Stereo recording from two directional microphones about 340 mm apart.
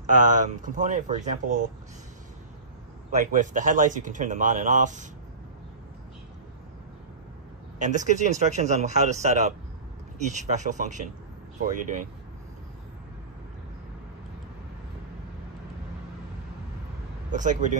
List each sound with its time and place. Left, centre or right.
0.0 s a man's voice: right
3.3 s a man's voice: right
7.8 s a man's voice: right
17.3 s a man's voice: right